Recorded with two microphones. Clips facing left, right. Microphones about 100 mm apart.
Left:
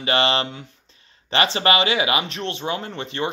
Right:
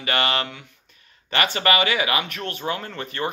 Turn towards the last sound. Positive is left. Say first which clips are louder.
# left 2 dB
turn(degrees=20)  # may be behind; listen again after turning